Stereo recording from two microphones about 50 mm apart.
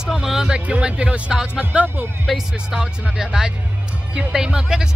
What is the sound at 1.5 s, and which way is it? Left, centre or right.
Speech, right.